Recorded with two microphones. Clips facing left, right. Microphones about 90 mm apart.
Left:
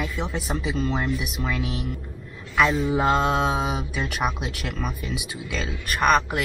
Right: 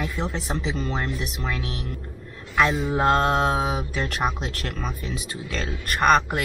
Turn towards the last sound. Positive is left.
turn(degrees=0)  # may be behind; listen again after turning